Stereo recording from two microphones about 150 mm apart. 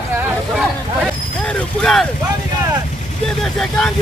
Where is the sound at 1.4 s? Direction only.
5° left (ahead or behind).